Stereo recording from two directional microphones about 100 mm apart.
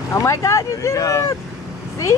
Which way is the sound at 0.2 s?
30° left (ahead or behind).